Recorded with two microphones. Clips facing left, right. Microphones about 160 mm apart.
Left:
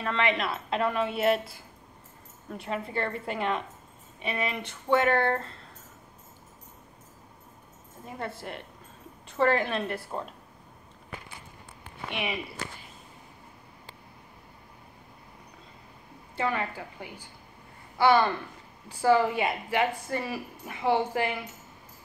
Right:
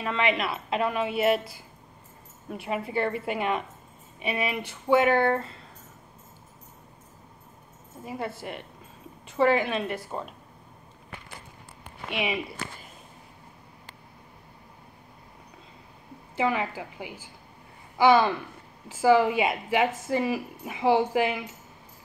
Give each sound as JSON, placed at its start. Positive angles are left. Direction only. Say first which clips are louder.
{"t": 0.0, "sound": "a woman's voice", "louder": "right 1 dB", "side_deg": -5}
{"t": 8.0, "sound": "speech", "louder": "right 3 dB", "side_deg": -5}
{"t": 16.3, "sound": "a woman's voice", "louder": "right 3 dB", "side_deg": -10}